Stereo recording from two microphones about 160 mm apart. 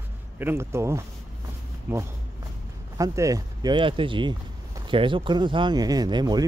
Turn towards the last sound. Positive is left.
turn(degrees=-25)  # may be behind; listen again after turning